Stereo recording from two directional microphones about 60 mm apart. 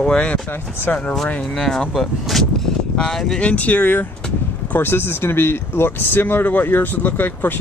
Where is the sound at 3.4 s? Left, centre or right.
Left.